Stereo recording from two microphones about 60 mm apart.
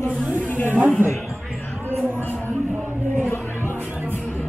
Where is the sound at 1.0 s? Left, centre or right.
Right.